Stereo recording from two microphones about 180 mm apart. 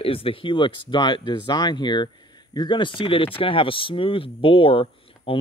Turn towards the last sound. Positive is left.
turn(degrees=30)  # may be behind; listen again after turning